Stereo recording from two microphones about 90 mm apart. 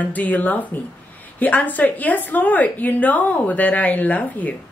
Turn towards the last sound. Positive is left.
turn(degrees=15)  # may be behind; listen again after turning